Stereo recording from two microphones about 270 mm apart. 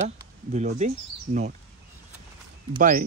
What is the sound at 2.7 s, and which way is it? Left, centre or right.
Speech, right.